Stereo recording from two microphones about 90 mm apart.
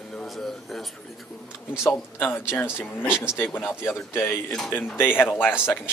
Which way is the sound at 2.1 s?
15° left (ahead or behind).